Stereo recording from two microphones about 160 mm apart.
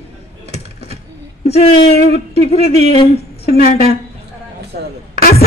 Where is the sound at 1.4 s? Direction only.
40° left (ahead or behind).